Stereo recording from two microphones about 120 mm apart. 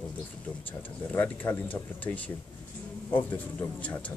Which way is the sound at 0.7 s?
15° left (ahead or behind).